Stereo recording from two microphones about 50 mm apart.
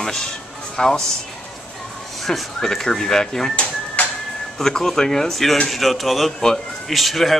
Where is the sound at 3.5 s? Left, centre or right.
Left.